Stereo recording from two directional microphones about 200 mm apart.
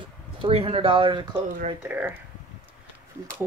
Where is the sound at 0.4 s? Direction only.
30° right (ahead or behind).